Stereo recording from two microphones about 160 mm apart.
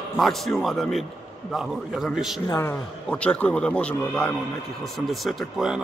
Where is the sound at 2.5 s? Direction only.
20° left (ahead or behind).